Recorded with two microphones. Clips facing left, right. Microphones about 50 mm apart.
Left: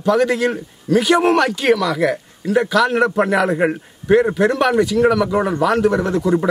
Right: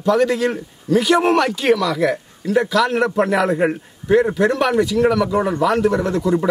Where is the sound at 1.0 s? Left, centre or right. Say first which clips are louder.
Left 1 dB; centre.